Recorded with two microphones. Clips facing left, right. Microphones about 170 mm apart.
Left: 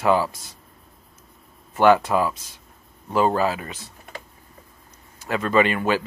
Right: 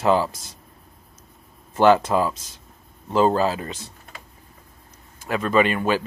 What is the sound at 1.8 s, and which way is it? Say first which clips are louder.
Speech: even; 25° right (ahead or behind).